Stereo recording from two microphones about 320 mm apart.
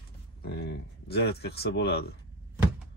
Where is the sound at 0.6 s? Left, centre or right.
Left.